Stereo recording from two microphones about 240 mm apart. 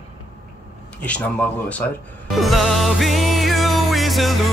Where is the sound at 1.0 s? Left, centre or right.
Centre.